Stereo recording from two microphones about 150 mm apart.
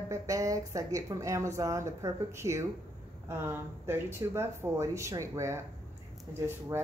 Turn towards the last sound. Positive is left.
turn(degrees=-15)  # may be behind; listen again after turning